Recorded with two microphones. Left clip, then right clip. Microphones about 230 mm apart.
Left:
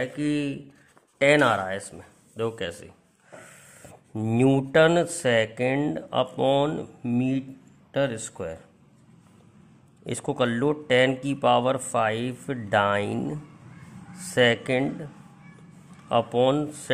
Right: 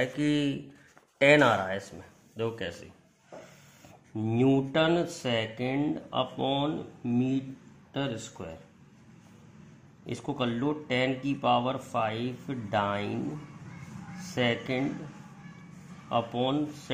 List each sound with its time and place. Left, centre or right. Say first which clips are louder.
0.0 s speech: left 1 dB; centre; by 2.9 s left
3.3 s speech: left 2 dB; left
10.0 s speech: left 7 dB; left
14.2 s speech: left 8 dB; left
16.1 s speech: left 7 dB; left